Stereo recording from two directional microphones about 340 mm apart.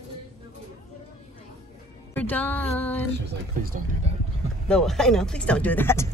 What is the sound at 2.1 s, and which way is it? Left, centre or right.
Speech, centre.